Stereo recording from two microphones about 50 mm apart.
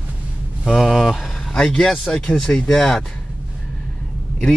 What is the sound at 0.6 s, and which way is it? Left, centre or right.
Speech, centre.